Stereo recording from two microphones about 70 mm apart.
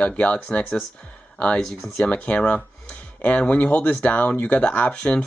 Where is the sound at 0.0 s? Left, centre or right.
Centre.